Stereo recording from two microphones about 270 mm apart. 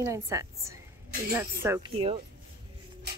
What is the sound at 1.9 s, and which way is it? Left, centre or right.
Speech, centre.